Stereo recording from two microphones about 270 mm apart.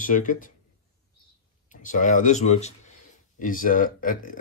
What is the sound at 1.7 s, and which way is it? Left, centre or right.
Speech, left.